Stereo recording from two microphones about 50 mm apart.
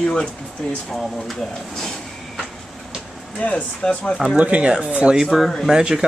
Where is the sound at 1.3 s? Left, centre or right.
Centre.